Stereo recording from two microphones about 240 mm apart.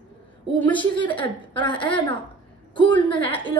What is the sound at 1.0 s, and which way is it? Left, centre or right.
A woman's voice, centre.